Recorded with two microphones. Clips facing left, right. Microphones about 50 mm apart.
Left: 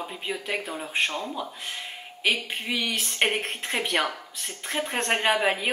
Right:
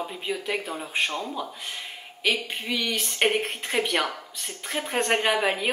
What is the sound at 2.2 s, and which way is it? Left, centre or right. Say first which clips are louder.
Speech: even; centre.